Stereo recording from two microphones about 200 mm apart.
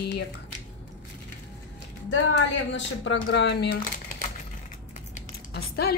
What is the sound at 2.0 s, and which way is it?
Speech, 60° left (ahead or behind).